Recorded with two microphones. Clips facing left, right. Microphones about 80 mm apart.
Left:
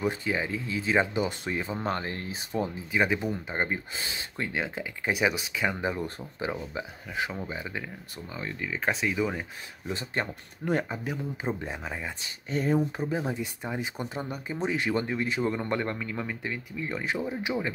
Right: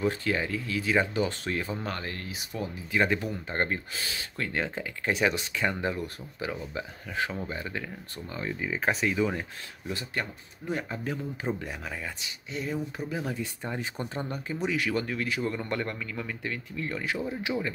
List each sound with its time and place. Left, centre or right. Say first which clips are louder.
0.0 s a man's voice: right 1 dB; centre; by 2.8 s left
2.9 s speech: right 1 dB; centre
3.9 s a man's voice: even; left
4.5 s speech: right 1 dB; centre
5.9 s a man's voice: left 2 dB; left
7.2 s speech: right 1 dB; centre
8.5 s speech: right 2 dB; centre
8.8 s speech: right 1 dB; centre
9.8 s a man's voice: left 2 dB; left
10.9 s a man's voice: even; centre
12.2 s a man's voice: left 5 dB; left; by 14.4 s centre
14.5 s a man's voice: left 1 dB; left